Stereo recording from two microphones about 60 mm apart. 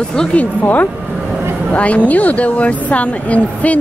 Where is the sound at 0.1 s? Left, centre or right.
Centre.